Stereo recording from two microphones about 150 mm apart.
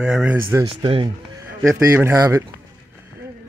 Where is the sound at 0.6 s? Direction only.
35° right (ahead or behind).